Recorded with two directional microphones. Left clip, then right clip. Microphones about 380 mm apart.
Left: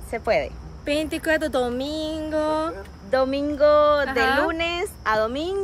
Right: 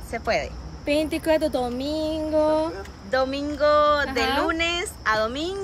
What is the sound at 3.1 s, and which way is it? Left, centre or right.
A woman's voice, centre.